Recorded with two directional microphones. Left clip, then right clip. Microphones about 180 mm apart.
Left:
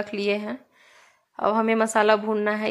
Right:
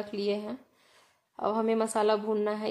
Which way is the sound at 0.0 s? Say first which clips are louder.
Left 6 dB; 15° left (ahead or behind).